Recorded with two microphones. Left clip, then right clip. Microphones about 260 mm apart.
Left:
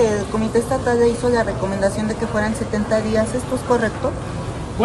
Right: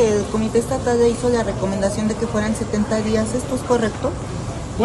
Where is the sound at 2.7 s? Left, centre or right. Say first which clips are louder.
Left 1 dB; centre.